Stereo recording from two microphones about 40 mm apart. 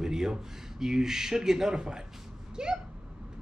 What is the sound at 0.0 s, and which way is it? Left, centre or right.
A woman's voice, centre.